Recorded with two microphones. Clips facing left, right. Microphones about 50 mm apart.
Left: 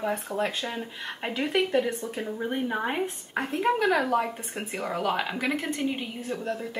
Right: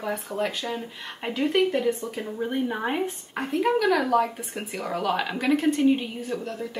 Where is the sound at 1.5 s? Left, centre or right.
Left.